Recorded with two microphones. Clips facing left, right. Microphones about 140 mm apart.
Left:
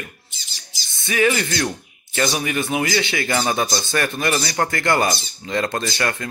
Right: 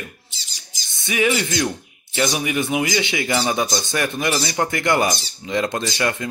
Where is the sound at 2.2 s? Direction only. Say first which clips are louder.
Right 1 dB; 15° right (ahead or behind).